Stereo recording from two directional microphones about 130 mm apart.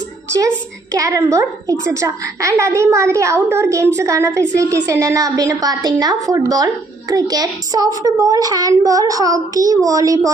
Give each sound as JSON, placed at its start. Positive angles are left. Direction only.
{"t": 0.9, "sound": "a woman's voice", "side_deg": -25}